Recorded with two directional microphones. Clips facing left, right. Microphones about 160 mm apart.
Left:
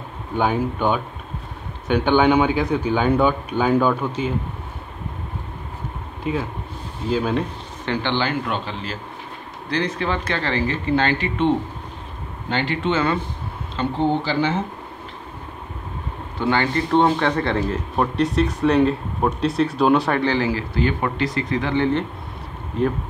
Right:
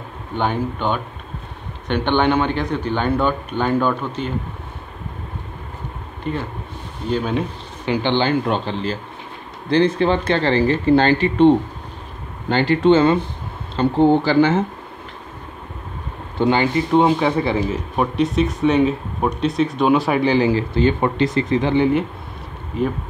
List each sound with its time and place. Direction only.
0.4 s a man's voice: 10° left (ahead or behind)
6.2 s speech: 5° left (ahead or behind)
7.8 s speech: 15° right (ahead or behind)
13.7 s speech: 50° right (ahead or behind)
16.3 s speech: 15° right (ahead or behind); by 20.2 s centre (ahead or behind)
20.2 s speech: 15° right (ahead or behind)
22.8 s speech: 5° right (ahead or behind)